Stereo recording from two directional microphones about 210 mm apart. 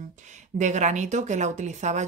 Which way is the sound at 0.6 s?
35° right (ahead or behind).